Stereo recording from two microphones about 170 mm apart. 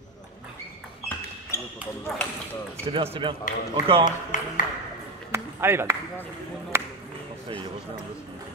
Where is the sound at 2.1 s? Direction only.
5° left (ahead or behind).